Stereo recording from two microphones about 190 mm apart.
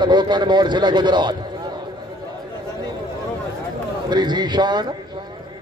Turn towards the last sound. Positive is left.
turn(degrees=-25)  # may be behind; listen again after turning